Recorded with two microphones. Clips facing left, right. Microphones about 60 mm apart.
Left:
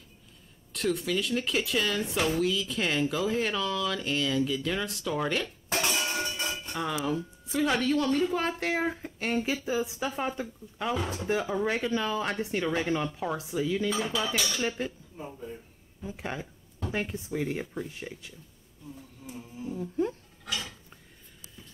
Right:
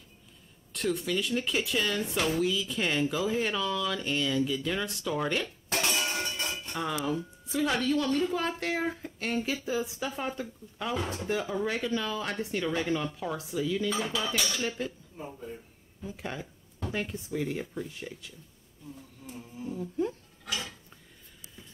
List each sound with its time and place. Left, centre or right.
0.7 s speech: centre
7.4 s speech: centre
11.0 s dishes: centre
11.2 s speech: centre
13.8 s dishes: centre
14.8 s speech: left
15.1 s dishes: centre
16.0 s speech: left
18.9 s insect: centre